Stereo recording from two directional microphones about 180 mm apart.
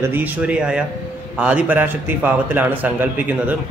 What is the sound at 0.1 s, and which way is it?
A man's voice, 10° right (ahead or behind).